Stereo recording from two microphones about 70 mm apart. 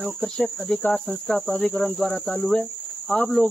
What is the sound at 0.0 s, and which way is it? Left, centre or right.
Cricket, centre.